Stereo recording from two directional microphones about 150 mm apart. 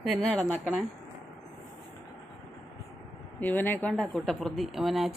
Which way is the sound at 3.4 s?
10° left (ahead or behind).